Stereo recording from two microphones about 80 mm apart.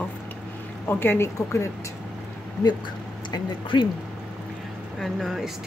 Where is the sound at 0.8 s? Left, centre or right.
Left.